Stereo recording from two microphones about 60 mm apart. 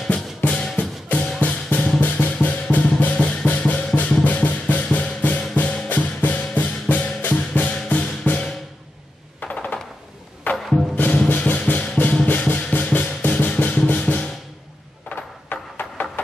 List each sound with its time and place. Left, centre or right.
0.1 s music: centre
1.4 s drum: left
4.9 s music: left
9.4 s a sound: left
10.4 s music: left
15.0 s a sound: left